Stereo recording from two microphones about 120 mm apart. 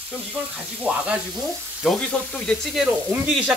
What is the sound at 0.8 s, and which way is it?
Stir, 10° right (ahead or behind).